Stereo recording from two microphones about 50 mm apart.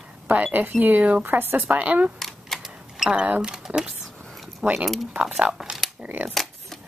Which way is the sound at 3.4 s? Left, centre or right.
Centre.